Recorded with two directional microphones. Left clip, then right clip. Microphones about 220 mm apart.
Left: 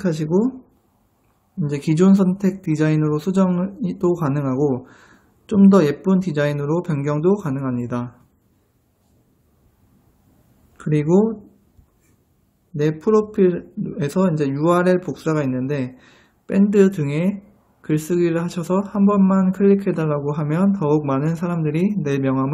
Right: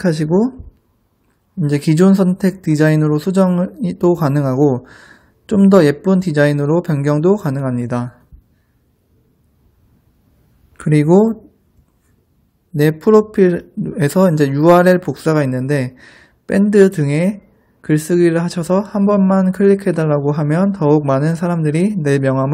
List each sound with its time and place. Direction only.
0.0 s speech: 30° right (ahead or behind)
1.6 s speech: 30° right (ahead or behind)
10.8 s speech: 30° right (ahead or behind)
12.7 s speech: 30° right (ahead or behind)